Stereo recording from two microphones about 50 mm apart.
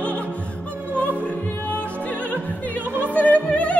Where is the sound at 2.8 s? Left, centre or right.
Right.